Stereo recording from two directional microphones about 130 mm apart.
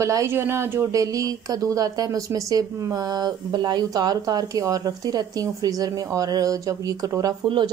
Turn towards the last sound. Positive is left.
turn(degrees=-40)  # may be behind; listen again after turning